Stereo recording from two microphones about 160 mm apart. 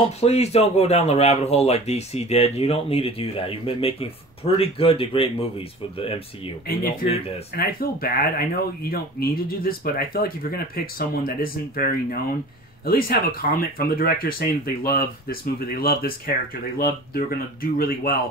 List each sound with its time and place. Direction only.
0.2 s speech: 40° left (ahead or behind)
6.7 s speech: 65° left (ahead or behind)